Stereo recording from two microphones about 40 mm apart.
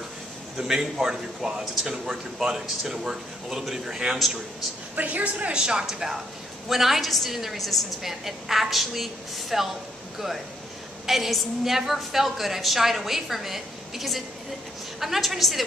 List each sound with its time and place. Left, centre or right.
0.6 s a man's voice: centre
4.9 s a woman's voice: right
5.5 s a man's voice: right; by 15.6 s centre